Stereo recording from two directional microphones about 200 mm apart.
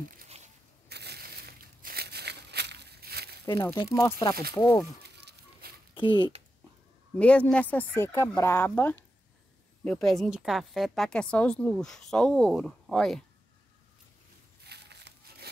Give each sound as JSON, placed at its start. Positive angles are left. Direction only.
{"t": 0.8, "sound": "a sound", "side_deg": -55}
{"t": 3.4, "sound": "speech", "side_deg": 20}
{"t": 5.0, "sound": "chicken", "side_deg": -55}
{"t": 5.9, "sound": "speech", "side_deg": 20}
{"t": 7.2, "sound": "a woman's voice", "side_deg": 5}
{"t": 14.6, "sound": "a sound", "side_deg": -55}